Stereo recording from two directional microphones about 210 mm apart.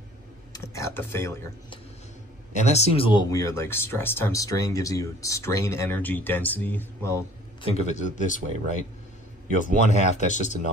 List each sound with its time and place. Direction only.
0.5 s a sound: 15° left (ahead or behind)
2.5 s speech: 30° left (ahead or behind); by 7.2 s 15° left (ahead or behind)
7.6 s speech: 30° left (ahead or behind)
9.9 s speech: 35° left (ahead or behind)